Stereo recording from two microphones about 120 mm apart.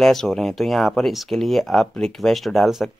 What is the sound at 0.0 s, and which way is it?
Speech, 5° left (ahead or behind).